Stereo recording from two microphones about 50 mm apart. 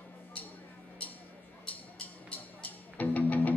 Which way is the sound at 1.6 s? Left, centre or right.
Left.